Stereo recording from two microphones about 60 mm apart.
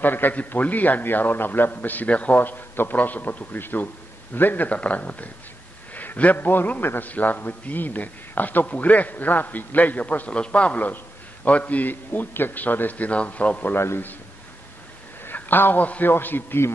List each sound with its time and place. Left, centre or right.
0.0 s a man's voice: left
13.7 s a man's voice: left
15.2 s a man's voice: left